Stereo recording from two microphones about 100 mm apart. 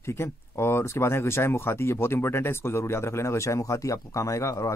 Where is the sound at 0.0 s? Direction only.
25° left (ahead or behind).